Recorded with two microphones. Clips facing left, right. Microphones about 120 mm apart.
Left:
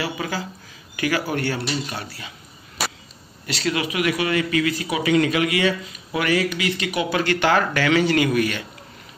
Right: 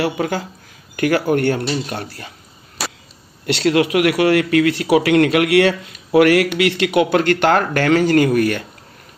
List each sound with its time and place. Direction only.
0.0 s speech: 60° right (ahead or behind)
3.4 s a man's voice: 65° right (ahead or behind); by 8.6 s 50° right (ahead or behind)